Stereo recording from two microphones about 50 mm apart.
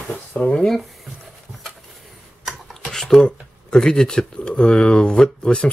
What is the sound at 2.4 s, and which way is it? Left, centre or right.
Speech, centre.